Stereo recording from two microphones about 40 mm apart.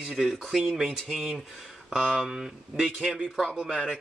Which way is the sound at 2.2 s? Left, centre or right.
Centre.